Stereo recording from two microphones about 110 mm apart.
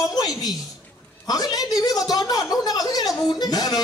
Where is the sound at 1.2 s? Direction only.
35° left (ahead or behind).